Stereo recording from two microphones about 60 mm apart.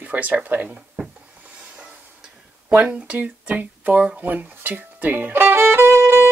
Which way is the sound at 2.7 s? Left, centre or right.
Right.